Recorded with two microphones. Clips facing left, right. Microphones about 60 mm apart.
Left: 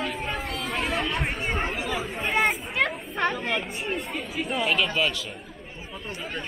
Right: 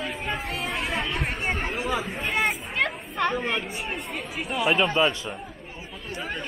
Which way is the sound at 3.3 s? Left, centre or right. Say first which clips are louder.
Right 1 dB; right.